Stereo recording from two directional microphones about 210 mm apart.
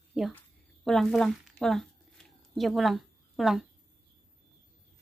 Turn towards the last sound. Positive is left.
turn(degrees=0)  # may be behind; listen again after turning